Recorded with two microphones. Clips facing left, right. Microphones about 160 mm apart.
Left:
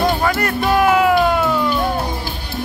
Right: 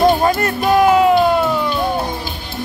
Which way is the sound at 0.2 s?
25° right (ahead or behind).